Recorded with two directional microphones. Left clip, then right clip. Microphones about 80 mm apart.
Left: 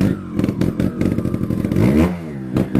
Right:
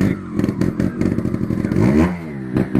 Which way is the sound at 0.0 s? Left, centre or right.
Left.